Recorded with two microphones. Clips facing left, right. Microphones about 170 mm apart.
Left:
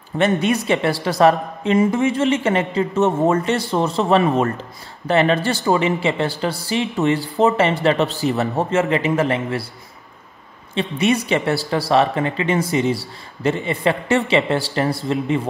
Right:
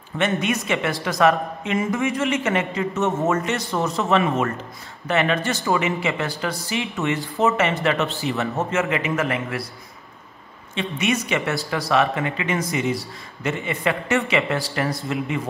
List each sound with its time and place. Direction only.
0.2 s speech: 35° left (ahead or behind)
10.7 s speech: 35° left (ahead or behind)